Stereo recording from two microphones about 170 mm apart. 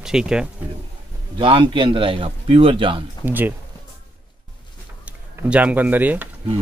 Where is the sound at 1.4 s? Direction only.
30° right (ahead or behind).